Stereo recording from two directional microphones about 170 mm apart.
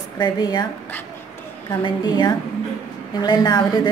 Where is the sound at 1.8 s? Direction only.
25° left (ahead or behind).